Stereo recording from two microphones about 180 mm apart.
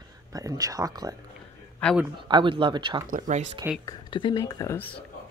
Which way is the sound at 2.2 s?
25° right (ahead or behind).